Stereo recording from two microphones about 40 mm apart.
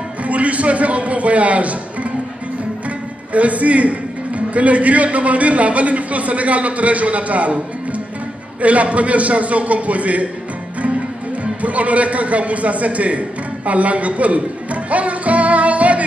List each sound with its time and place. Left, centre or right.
0.2 s a man's voice: right
3.3 s a man's voice: right
11.6 s a man's voice: right